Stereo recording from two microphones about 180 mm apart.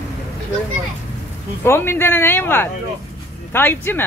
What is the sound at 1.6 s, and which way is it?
Speech, 15° left (ahead or behind).